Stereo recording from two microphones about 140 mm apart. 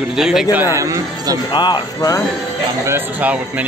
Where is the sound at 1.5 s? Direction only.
35° left (ahead or behind).